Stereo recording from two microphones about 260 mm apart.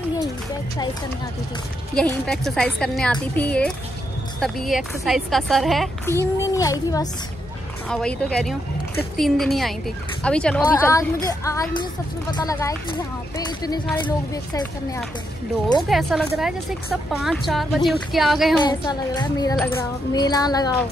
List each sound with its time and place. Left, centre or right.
2.0 s a woman's voice: centre
6.1 s a woman's voice: centre
15.9 s a woman's voice: centre
18.6 s speech: centre